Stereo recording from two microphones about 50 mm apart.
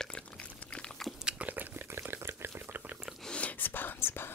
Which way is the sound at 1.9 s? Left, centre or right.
Right.